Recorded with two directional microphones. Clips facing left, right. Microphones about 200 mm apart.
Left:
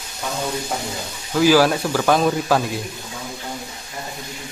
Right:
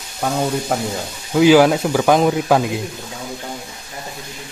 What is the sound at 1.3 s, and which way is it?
Speech, 20° right (ahead or behind).